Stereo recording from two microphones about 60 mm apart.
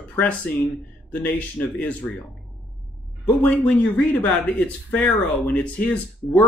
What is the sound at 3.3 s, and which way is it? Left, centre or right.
Speech, left.